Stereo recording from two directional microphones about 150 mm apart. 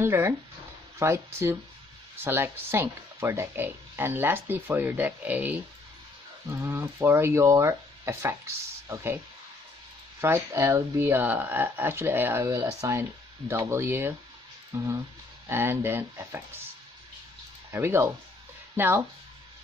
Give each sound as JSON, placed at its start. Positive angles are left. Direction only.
{"t": 0.0, "sound": "speech", "side_deg": -15}
{"t": 10.2, "sound": "speech", "side_deg": -20}
{"t": 17.7, "sound": "speech", "side_deg": -15}